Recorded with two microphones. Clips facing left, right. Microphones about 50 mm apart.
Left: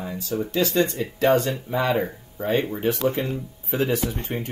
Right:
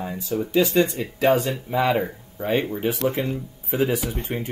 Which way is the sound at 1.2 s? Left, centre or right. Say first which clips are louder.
Even; centre.